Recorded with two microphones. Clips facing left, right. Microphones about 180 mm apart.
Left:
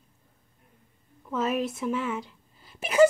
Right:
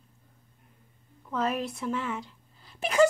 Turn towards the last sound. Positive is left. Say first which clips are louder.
# left 3 dB
turn(degrees=5)  # may be behind; listen again after turning